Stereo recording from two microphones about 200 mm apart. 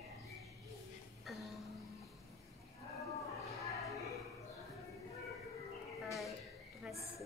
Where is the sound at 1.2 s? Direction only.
Centre (ahead or behind).